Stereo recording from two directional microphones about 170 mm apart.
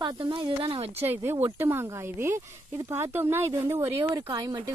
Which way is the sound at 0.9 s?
15° right (ahead or behind).